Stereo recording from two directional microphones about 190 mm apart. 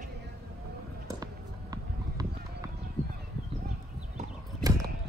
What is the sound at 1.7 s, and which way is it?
Clip-clop, 20° right (ahead or behind).